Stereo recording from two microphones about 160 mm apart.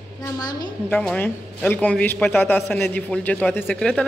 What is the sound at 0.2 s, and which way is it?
Speech, 25° left (ahead or behind).